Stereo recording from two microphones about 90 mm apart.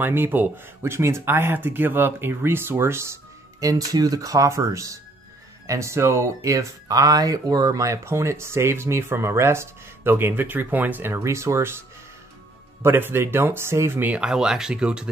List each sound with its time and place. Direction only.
0.0 s speech: 25° right (ahead or behind)
3.6 s speech: 45° right (ahead or behind)
12.8 s speech: 25° right (ahead or behind)
14.2 s speech: 5° right (ahead or behind)